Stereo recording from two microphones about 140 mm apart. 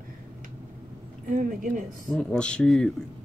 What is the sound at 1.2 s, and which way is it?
Speech, 75° right (ahead or behind).